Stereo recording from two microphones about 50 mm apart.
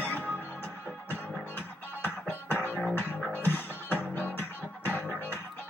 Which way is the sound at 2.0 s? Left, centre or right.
Left.